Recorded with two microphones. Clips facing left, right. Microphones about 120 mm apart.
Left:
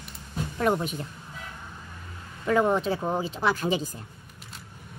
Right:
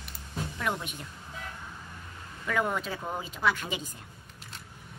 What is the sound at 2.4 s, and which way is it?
Speech, 30° left (ahead or behind).